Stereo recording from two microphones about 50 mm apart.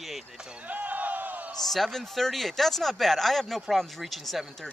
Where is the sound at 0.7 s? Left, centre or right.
Right.